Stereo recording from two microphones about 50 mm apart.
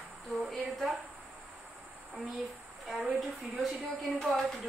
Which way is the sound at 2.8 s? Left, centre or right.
Centre.